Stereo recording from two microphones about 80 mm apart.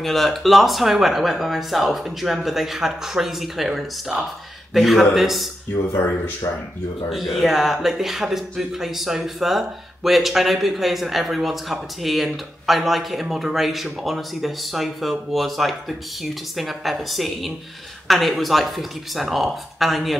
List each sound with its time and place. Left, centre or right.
0.0 s speech: centre
5.9 s speech: left
7.1 s speech: centre